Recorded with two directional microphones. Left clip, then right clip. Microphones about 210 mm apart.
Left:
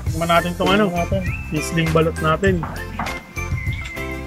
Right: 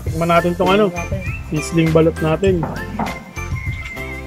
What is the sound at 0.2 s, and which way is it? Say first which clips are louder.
Music: right 3 dB; 10° right (ahead or behind).